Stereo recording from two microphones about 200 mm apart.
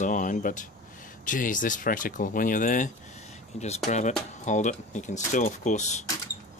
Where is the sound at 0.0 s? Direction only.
40° left (ahead or behind).